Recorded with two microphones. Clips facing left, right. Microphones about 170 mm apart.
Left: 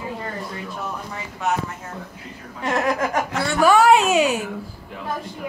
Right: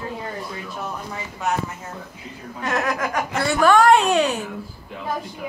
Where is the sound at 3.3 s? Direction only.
5° right (ahead or behind).